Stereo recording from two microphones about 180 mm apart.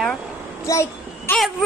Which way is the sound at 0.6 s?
15° left (ahead or behind).